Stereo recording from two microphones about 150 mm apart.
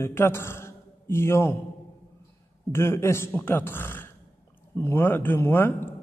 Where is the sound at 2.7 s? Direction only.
15° left (ahead or behind).